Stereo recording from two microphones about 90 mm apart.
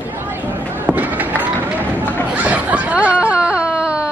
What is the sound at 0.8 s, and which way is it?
Fireworks, 20° right (ahead or behind).